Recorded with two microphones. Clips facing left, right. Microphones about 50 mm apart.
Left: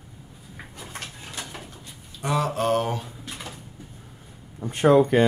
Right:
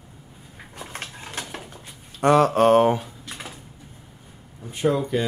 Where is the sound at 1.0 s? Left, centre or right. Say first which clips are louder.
Right 3 dB; right.